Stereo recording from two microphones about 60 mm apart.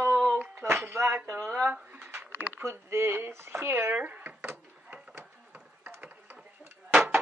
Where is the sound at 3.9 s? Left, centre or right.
Right.